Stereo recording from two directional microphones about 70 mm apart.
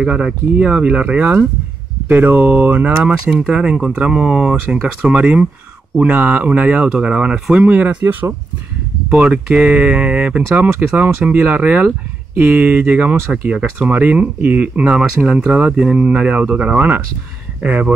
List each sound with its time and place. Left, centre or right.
0.0 s speech: centre
7.6 s speech: right
9.1 s speech: centre